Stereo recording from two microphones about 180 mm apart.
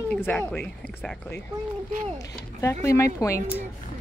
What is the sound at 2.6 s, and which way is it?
Speech, 15° left (ahead or behind).